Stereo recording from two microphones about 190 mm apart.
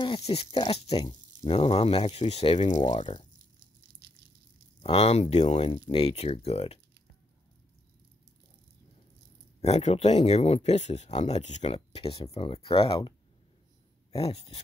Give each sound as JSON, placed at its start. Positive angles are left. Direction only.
{"t": 0.0, "sound": "speech", "side_deg": 30}
{"t": 4.8, "sound": "speech", "side_deg": 30}
{"t": 9.6, "sound": "speech", "side_deg": 35}
{"t": 14.1, "sound": "speech", "side_deg": 30}